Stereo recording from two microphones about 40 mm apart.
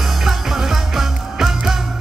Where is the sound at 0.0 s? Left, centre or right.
Centre.